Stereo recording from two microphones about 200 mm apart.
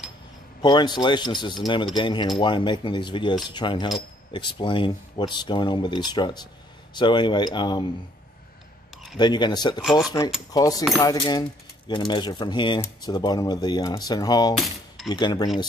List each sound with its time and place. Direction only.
0.6 s speech: 20° left (ahead or behind)
9.2 s speech: 20° left (ahead or behind)
9.8 s speech: centre (ahead or behind)
10.5 s speech: 20° left (ahead or behind)